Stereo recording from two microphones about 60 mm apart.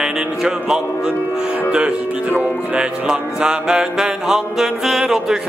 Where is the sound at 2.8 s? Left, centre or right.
Centre.